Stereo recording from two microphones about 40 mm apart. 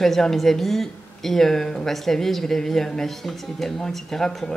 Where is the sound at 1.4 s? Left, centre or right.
Centre.